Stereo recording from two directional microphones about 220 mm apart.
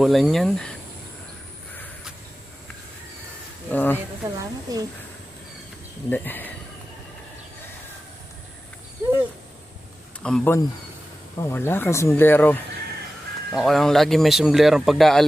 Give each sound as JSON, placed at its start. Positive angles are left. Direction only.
{"t": 0.0, "sound": "speech", "side_deg": 0}
{"t": 3.7, "sound": "speech", "side_deg": 10}
{"t": 4.4, "sound": "a woman's voice", "side_deg": -15}
{"t": 6.0, "sound": "speech", "side_deg": 10}
{"t": 10.2, "sound": "speech", "side_deg": 5}